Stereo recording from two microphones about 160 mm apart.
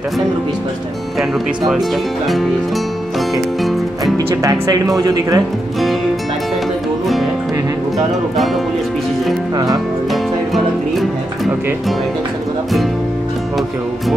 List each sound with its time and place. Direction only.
4.4 s speech: 20° right (ahead or behind)